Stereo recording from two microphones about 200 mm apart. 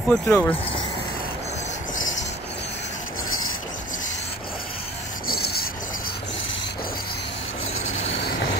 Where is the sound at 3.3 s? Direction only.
90° left.